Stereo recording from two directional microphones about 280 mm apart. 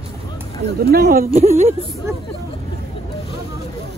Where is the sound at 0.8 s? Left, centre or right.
Right.